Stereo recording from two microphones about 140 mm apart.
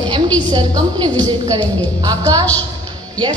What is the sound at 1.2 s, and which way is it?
A woman's voice, 30° right (ahead or behind).